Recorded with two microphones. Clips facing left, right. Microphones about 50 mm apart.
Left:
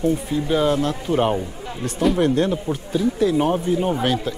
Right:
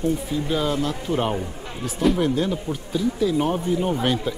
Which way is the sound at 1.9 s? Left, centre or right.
Centre.